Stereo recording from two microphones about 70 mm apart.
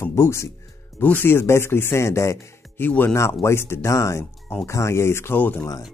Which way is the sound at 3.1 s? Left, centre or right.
Left.